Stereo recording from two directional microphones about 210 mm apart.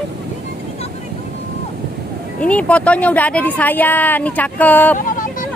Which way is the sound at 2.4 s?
5° left (ahead or behind).